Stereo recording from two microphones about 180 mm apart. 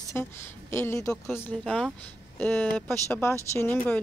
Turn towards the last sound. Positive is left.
turn(degrees=10)  # may be behind; listen again after turning